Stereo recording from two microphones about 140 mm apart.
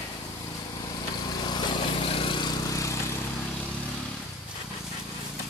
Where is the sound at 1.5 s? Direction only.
35° left (ahead or behind).